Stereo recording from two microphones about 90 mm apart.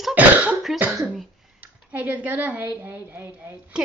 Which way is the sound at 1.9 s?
15° right (ahead or behind).